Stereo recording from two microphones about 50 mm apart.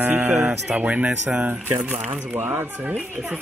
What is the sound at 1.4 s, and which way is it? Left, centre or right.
Speech, right.